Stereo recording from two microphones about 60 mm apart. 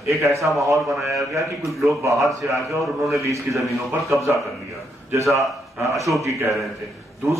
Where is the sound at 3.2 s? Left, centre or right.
Right.